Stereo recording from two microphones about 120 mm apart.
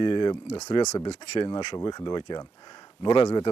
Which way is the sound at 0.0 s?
40° left (ahead or behind).